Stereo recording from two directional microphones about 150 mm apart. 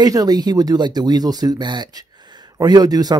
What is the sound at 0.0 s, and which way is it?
Speech, 25° right (ahead or behind).